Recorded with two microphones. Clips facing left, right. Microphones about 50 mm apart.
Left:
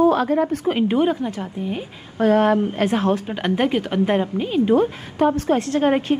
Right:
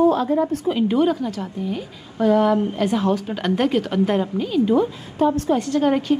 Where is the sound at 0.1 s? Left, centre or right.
Left.